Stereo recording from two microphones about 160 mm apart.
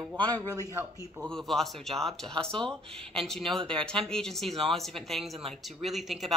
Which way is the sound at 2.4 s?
30° right (ahead or behind).